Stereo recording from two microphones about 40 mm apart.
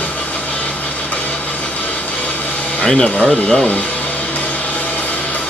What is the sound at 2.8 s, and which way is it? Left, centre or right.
Speech, centre.